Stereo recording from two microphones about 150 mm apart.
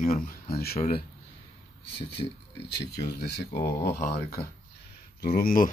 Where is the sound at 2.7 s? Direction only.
90° left.